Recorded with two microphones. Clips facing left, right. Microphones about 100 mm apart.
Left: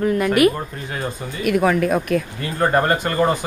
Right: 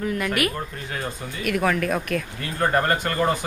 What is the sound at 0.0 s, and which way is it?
Speech, 35° left (ahead or behind).